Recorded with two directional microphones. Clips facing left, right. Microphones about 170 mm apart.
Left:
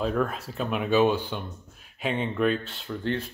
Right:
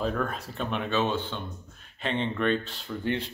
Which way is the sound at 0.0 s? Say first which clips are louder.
Left 3 dB; 5° left (ahead or behind).